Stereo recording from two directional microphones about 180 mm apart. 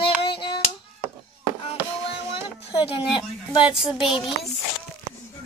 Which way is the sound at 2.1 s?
30° left (ahead or behind).